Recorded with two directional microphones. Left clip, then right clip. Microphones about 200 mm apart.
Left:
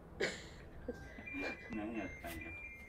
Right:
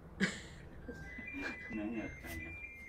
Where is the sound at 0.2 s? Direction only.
Centre (ahead or behind).